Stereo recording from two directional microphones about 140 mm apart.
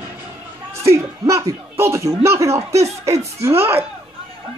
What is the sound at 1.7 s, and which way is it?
Speech, 20° right (ahead or behind).